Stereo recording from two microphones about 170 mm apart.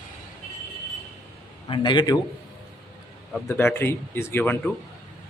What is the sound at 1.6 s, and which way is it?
Speech, 30° left (ahead or behind).